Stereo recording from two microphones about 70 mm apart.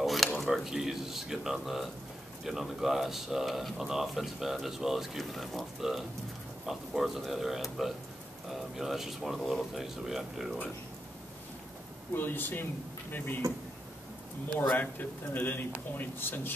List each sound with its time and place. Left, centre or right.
0.0 s a sound: centre
0.5 s speech: centre
12.2 s a man's voice: left
14.7 s a man's voice: left